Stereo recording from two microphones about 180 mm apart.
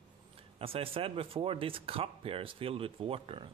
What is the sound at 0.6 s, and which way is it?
Speech, 30° right (ahead or behind).